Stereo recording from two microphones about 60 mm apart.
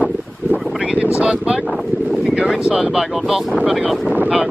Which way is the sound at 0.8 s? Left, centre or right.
Right.